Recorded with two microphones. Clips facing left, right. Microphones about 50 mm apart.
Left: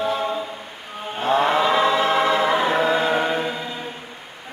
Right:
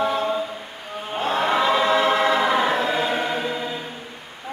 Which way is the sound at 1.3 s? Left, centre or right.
Centre.